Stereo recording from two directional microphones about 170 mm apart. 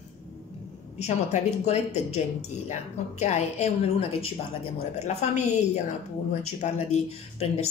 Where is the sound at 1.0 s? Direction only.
45° left (ahead or behind).